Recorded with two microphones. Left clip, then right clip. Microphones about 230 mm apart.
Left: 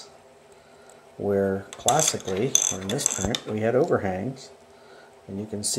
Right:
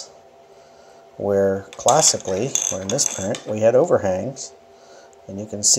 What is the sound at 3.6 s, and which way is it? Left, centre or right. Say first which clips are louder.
Speech: right 7 dB; centre.